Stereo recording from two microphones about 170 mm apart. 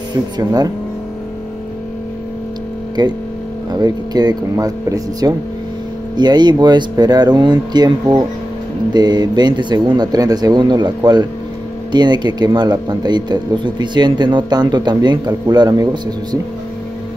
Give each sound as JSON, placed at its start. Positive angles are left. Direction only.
{"t": 0.1, "sound": "speech", "side_deg": -20}
{"t": 3.0, "sound": "speech", "side_deg": -25}